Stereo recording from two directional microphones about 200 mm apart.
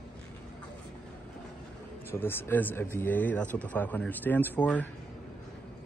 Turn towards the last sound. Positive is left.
turn(degrees=10)  # may be behind; listen again after turning